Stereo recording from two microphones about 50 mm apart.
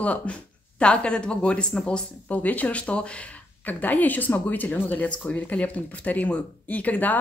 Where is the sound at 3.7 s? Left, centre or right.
Left.